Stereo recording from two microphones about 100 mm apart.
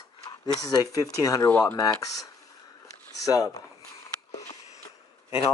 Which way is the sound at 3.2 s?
35° left (ahead or behind).